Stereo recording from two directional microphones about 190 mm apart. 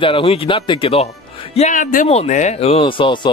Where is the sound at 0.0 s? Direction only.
30° left (ahead or behind).